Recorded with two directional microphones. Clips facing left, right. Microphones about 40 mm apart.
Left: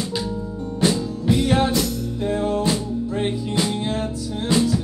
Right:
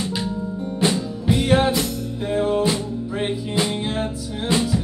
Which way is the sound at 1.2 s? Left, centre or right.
Centre.